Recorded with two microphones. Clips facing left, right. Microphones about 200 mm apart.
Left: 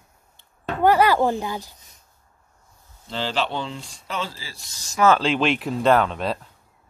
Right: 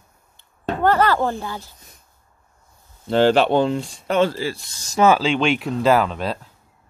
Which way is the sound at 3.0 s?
55° right (ahead or behind).